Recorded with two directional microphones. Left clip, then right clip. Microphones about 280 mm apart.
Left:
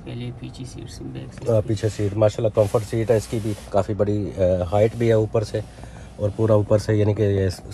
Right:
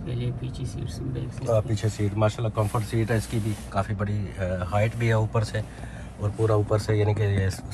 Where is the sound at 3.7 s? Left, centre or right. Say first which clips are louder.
Left 9 dB; centre.